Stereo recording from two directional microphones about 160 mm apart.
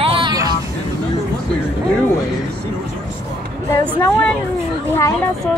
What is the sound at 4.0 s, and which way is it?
Speech, 10° left (ahead or behind).